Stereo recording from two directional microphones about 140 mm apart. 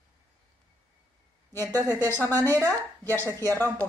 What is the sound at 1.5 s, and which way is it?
Speech, 15° left (ahead or behind).